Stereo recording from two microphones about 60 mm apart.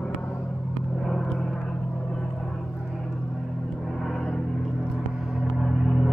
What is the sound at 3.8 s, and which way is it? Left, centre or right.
Gong, centre.